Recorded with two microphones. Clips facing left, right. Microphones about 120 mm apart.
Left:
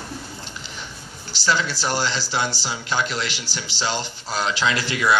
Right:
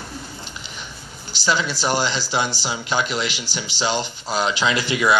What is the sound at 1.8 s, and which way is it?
Speech, 20° right (ahead or behind).